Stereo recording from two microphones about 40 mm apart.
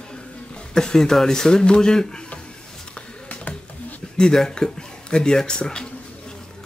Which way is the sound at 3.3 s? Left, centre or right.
Left.